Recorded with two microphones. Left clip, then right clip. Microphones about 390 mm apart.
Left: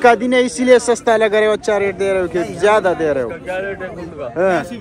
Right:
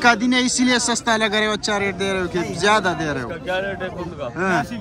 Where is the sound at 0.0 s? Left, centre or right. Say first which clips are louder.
Left 5 dB; centre.